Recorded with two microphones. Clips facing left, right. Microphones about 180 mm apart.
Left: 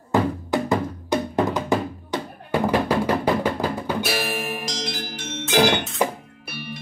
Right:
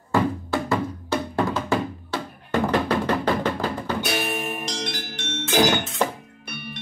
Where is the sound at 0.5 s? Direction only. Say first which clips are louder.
Left 2 dB; 15° left (ahead or behind).